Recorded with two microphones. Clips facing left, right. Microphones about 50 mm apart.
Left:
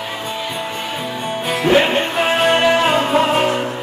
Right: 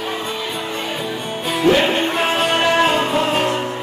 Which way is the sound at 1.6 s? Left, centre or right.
Centre.